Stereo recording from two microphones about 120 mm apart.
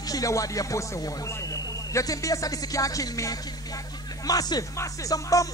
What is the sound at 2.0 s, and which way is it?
Speech, 30° left (ahead or behind).